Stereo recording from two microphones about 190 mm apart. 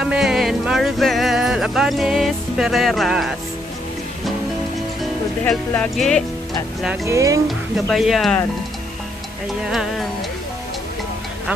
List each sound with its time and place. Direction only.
0.0 s music: centre (ahead or behind)
5.4 s speech: 10° left (ahead or behind)
7.1 s speech: 15° right (ahead or behind)
7.4 s speech: centre (ahead or behind)
9.7 s speech: centre (ahead or behind)